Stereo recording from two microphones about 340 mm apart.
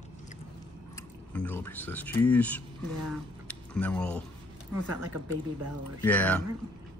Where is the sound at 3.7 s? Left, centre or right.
Centre.